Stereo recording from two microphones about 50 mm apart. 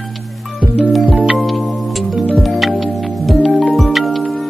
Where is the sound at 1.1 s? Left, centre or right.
Centre.